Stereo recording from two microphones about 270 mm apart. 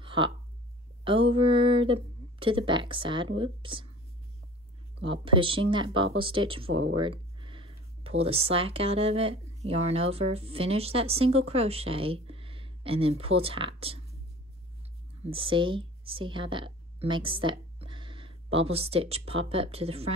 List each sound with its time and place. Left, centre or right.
0.0 s a sound: centre
1.0 s speech: centre
5.0 s speech: centre
15.2 s speech: centre